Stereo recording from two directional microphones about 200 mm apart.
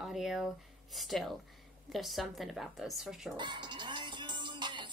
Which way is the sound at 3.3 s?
20° right (ahead or behind).